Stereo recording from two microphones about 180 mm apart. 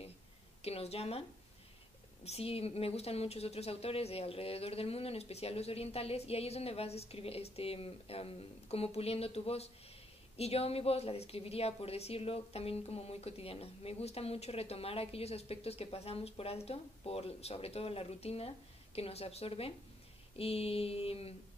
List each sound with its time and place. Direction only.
0.6 s a woman's voice: 35° left (ahead or behind)
2.2 s a woman's voice: 35° left (ahead or behind)